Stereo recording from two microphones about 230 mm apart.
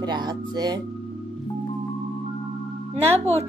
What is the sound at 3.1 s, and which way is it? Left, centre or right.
Speech, right.